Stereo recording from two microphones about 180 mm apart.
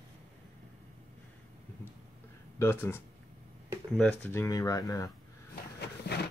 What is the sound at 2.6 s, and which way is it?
Speech, 15° left (ahead or behind).